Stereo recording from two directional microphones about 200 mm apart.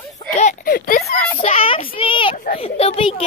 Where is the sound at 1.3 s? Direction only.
30° left (ahead or behind).